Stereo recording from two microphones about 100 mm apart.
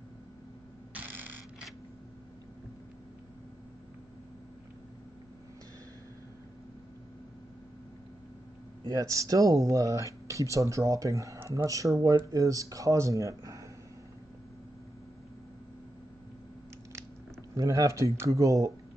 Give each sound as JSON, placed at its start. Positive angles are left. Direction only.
{"t": 0.9, "sound": "mechanisms", "side_deg": -20}
{"t": 8.8, "sound": "speech", "side_deg": -35}
{"t": 17.6, "sound": "speech", "side_deg": -35}